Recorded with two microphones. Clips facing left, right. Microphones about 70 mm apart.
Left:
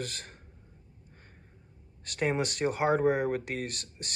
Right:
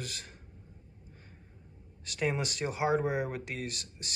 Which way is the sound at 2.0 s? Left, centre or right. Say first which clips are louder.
Left 3 dB; left.